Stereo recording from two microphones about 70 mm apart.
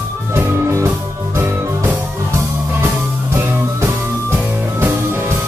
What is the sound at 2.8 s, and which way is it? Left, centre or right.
Music, right.